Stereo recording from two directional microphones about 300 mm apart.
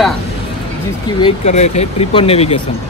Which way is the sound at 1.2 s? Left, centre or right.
Left.